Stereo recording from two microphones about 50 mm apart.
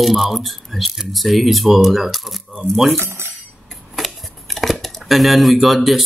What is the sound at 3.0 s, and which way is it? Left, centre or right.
Speech, right.